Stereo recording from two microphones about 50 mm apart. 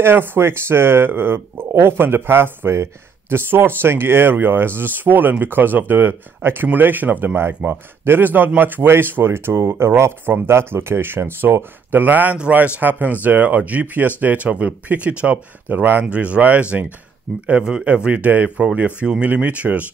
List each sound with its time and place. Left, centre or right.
0.0 s speech: right
7.4 s speech: right
10.2 s speech: right
15.7 s speech: right
16.1 s speech: right
18.1 s speech: right